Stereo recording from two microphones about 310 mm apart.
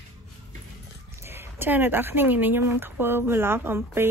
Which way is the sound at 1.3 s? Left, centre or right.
Centre.